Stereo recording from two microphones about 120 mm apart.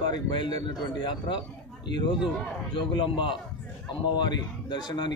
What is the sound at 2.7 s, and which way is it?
A man's voice, 45° left (ahead or behind).